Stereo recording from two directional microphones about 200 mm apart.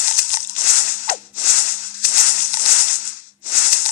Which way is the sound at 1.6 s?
45° left (ahead or behind).